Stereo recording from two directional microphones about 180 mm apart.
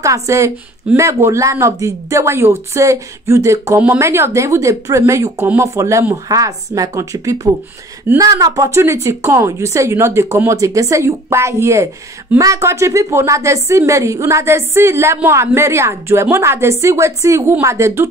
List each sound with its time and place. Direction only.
0.0 s speech: 15° right (ahead or behind)